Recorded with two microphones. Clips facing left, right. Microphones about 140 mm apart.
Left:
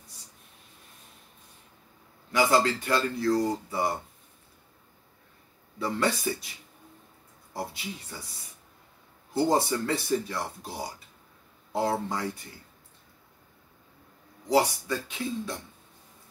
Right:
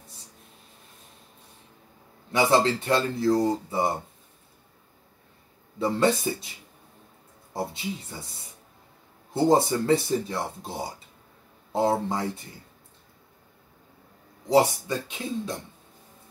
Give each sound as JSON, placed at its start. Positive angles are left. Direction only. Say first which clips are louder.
{"t": 2.3, "sound": "speech", "louder": "right 2 dB", "side_deg": -25}
{"t": 5.8, "sound": "speech", "louder": "right 5 dB", "side_deg": -25}
{"t": 7.5, "sound": "speech", "louder": "right 5 dB", "side_deg": -25}
{"t": 14.5, "sound": "speech", "louder": "right 3 dB", "side_deg": -25}